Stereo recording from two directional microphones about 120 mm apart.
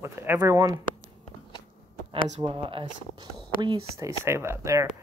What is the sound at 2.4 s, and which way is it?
Speech, 45° right (ahead or behind).